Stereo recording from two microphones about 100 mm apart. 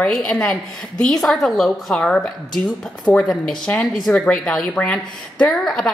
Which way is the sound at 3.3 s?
5° left (ahead or behind).